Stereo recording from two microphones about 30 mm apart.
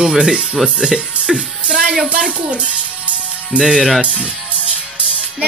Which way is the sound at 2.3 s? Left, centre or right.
Right.